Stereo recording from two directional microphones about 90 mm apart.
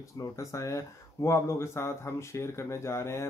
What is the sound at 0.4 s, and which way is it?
Speech, 35° left (ahead or behind).